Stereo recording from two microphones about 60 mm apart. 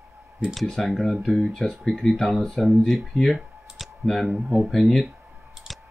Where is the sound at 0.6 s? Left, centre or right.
Centre.